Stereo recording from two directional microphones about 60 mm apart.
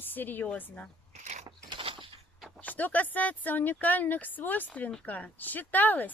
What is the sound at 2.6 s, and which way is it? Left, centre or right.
A woman's voice, left.